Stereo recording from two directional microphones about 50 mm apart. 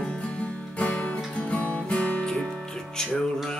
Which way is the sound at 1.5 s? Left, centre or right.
Left.